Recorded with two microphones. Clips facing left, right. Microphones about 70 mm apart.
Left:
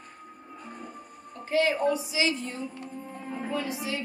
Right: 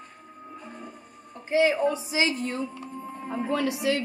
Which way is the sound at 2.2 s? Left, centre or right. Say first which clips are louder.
Right 2 dB; right.